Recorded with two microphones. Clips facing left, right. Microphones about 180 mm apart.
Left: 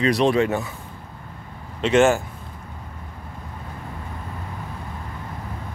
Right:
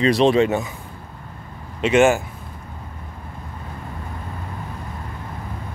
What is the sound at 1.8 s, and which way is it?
Speech, 10° right (ahead or behind).